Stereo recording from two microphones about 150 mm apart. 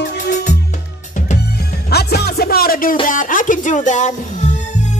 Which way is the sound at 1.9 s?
90° left.